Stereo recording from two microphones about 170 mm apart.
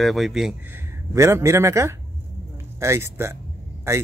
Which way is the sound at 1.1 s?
15° right (ahead or behind).